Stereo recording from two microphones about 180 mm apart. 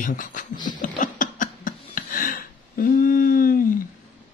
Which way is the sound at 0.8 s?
45° left (ahead or behind).